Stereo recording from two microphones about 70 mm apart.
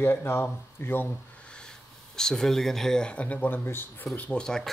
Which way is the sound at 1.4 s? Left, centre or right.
Centre.